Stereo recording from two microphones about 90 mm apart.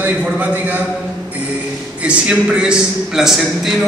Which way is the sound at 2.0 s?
10° right (ahead or behind).